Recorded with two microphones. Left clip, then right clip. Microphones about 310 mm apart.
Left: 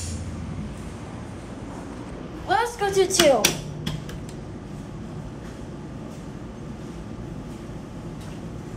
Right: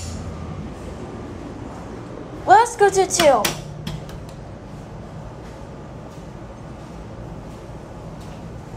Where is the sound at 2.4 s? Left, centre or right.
Centre.